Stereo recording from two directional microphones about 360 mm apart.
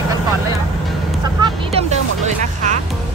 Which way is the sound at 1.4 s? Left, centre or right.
Centre.